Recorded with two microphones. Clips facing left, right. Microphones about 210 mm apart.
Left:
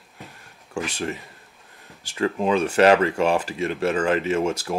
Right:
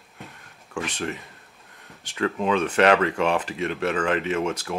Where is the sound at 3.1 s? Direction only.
35° left (ahead or behind).